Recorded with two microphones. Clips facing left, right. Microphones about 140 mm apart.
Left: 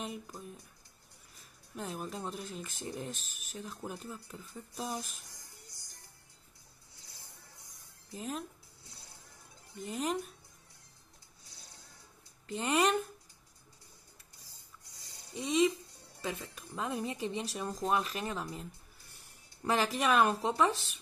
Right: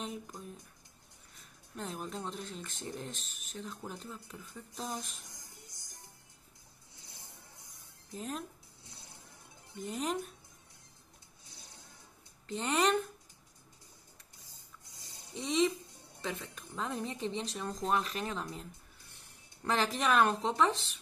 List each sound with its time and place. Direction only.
0.0 s speech: 5° left (ahead or behind)
1.8 s speech: 5° left (ahead or behind)
5.3 s music: 20° right (ahead or behind)
7.0 s vehicle: 20° right (ahead or behind)
8.1 s speech: centre (ahead or behind)
8.8 s vehicle: 20° right (ahead or behind)
9.8 s speech: centre (ahead or behind)
11.4 s music: 20° right (ahead or behind)
12.4 s speech: 5° left (ahead or behind)
14.4 s a sound: 20° right (ahead or behind)
15.3 s speech: 5° left (ahead or behind)